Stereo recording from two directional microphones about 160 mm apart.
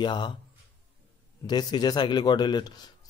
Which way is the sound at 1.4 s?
25° left (ahead or behind).